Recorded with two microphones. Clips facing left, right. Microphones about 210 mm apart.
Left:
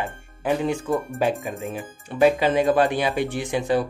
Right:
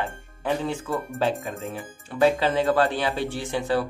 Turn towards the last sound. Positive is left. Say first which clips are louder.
# left 3 dB
turn(degrees=15)  # may be behind; listen again after turning